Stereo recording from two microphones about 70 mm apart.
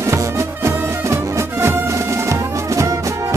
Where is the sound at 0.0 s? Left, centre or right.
Right.